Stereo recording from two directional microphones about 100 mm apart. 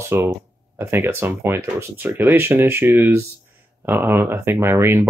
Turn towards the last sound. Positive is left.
turn(degrees=-25)  # may be behind; listen again after turning